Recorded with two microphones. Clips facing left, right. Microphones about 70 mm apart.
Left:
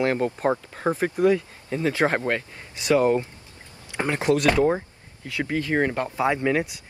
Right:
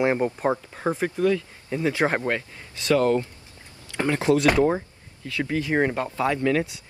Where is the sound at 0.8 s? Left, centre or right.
Left.